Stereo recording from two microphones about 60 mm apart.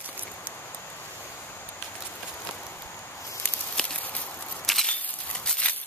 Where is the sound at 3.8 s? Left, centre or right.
Centre.